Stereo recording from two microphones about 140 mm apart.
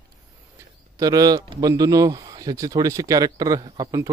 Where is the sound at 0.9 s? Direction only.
25° right (ahead or behind).